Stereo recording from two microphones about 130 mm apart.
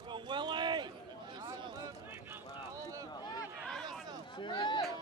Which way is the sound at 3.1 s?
30° left (ahead or behind).